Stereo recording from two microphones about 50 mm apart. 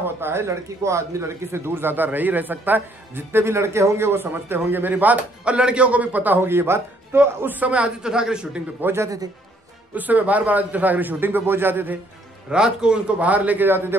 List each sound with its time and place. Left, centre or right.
0.0 s speech: right
1.8 s a man's voice: right
6.4 s a man's voice: right
8.0 s speech: centre
9.9 s a man's voice: right
12.4 s speech: centre
13.2 s a man's voice: right
13.7 s a man's voice: right